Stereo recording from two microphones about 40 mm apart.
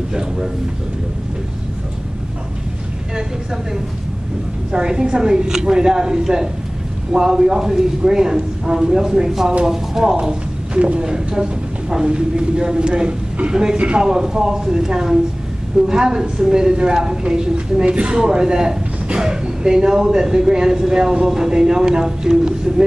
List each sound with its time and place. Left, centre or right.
4.7 s speech: centre
10.2 s speech: right
13.7 s speech: right
14.0 s speech: centre